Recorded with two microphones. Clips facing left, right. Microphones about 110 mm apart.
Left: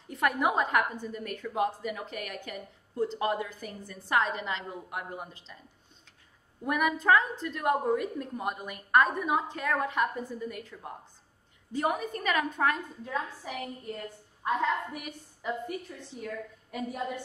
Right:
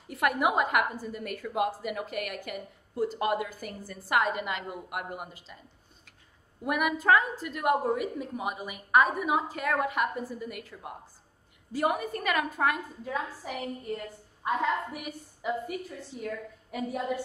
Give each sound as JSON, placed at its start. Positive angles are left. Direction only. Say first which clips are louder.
{"t": 0.1, "sound": "a woman's voice", "louder": "right 1 dB", "side_deg": -5}
{"t": 6.6, "sound": "a woman's voice", "louder": "even", "side_deg": -5}